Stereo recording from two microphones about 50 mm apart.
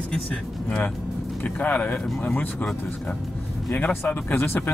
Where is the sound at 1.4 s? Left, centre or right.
Left.